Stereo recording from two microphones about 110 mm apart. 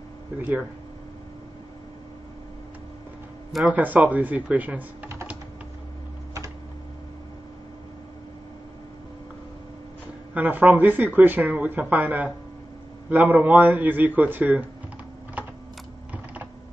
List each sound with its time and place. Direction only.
0.4 s speech: 15° right (ahead or behind)
3.7 s speech: 15° right (ahead or behind)
10.3 s speech: 15° right (ahead or behind)